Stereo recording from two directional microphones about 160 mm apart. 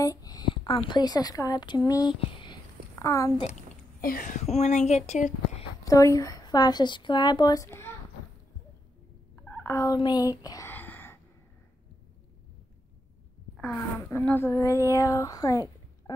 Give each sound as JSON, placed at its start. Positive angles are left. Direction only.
{"t": 0.0, "sound": "a woman's voice", "side_deg": 20}
{"t": 2.1, "sound": "a sound", "side_deg": 30}
{"t": 4.0, "sound": "speech", "side_deg": 60}
{"t": 5.9, "sound": "a woman's voice", "side_deg": 20}
{"t": 9.3, "sound": "fowl", "side_deg": 10}
{"t": 10.7, "sound": "a sound", "side_deg": 10}
{"t": 13.7, "sound": "a woman's voice", "side_deg": 15}